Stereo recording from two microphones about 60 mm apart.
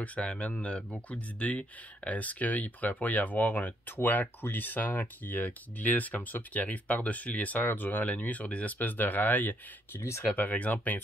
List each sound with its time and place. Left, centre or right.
0.0 s speech: left